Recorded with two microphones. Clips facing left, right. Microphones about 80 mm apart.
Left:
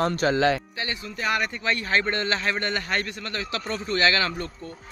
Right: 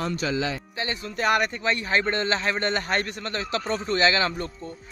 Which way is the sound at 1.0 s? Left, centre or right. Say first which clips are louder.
Right 4 dB; right.